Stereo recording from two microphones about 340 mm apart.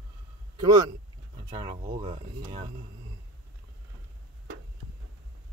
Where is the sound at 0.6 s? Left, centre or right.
Centre.